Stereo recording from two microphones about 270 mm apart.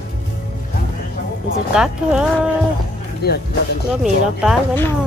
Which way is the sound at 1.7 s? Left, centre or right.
Centre.